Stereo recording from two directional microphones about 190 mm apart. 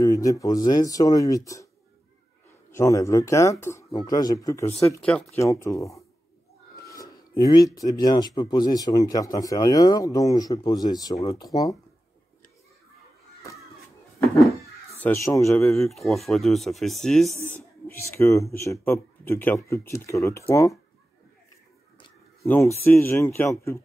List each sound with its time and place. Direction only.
0.0 s speech: 15° left (ahead or behind)
2.7 s speech: 15° left (ahead or behind)
5.0 s speech: 5° left (ahead or behind)
5.4 s speech: 15° left (ahead or behind)
14.9 s speech: 10° left (ahead or behind)
15.7 s speech: centre (ahead or behind)
17.9 s speech: 15° left (ahead or behind)
22.4 s speech: 15° left (ahead or behind)